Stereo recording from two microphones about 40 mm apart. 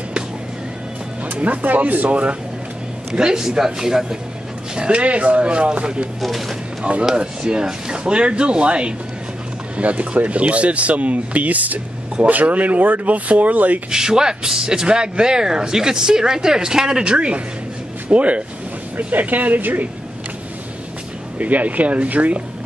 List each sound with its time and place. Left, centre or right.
1.2 s speech: right
2.0 s speech: right
3.2 s speech: centre
4.7 s speech: right
9.8 s speech: right
13.8 s speech: centre; by 19.9 s right
21.4 s speech: right